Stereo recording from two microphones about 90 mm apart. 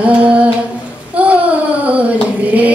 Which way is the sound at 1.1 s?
15° right (ahead or behind).